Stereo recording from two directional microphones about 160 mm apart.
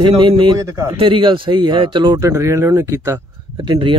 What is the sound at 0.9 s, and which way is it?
Speech, 30° right (ahead or behind).